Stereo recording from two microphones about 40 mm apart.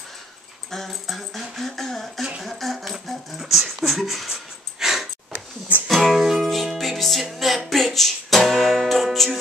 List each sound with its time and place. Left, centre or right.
0.7 s a sound: centre
5.9 s music: centre
6.5 s music: centre